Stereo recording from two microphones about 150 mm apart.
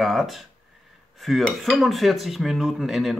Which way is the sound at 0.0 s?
Centre (ahead or behind).